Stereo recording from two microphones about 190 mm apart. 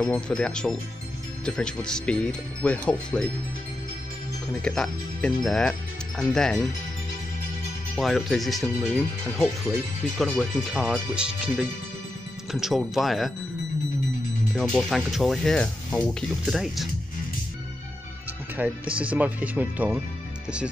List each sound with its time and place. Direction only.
0.0 s speech: 5° left (ahead or behind)
4.5 s speech: 5° left (ahead or behind)
7.9 s speech: centre (ahead or behind)
14.5 s speech: 5° left (ahead or behind)
18.9 s speech: 25° right (ahead or behind)
19.1 s speech: 10° right (ahead or behind)